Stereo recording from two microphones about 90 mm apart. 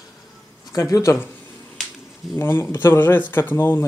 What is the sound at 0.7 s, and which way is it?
Speech, 35° left (ahead or behind).